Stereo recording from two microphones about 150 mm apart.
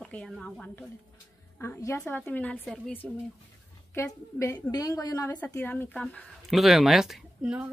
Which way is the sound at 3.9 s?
20° left (ahead or behind).